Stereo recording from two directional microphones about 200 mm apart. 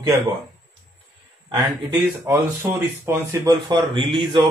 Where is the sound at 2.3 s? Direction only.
10° right (ahead or behind).